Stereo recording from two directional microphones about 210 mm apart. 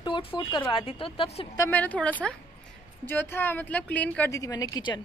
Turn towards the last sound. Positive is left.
turn(degrees=20)  # may be behind; listen again after turning